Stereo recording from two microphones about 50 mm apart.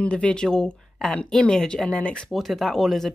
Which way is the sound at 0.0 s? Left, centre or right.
Left.